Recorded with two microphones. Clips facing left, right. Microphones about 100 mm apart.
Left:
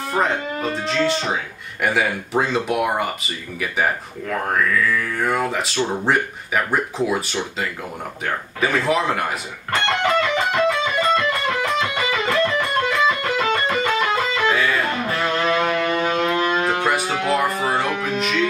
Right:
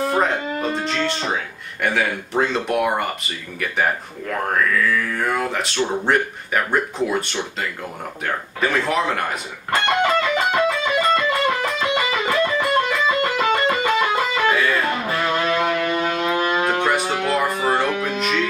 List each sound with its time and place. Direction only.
0.1 s speech: centre (ahead or behind)
5.2 s speech: centre (ahead or behind)
8.5 s speech: 5° left (ahead or behind)
9.8 s music: 10° right (ahead or behind)
16.6 s music: centre (ahead or behind)